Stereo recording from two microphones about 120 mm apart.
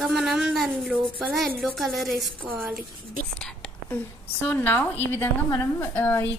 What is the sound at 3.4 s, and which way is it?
Whispering, 5° left (ahead or behind).